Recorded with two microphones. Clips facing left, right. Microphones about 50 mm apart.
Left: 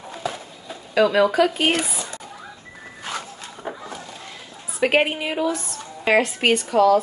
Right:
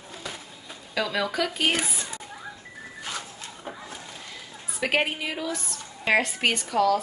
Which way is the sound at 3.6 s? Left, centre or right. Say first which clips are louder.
Left 7 dB; left.